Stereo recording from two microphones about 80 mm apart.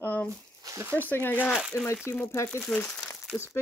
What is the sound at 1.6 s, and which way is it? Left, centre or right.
Speech, centre.